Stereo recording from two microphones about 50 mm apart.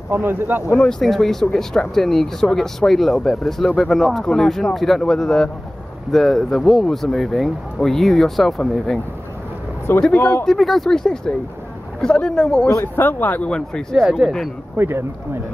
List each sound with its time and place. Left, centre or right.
0.1 s speech: right
0.8 s speech: centre
10.1 s speech: left
10.4 s speech: centre
12.8 s speech: left
13.5 s speech: centre
14.0 s speech: centre
14.8 s speech: right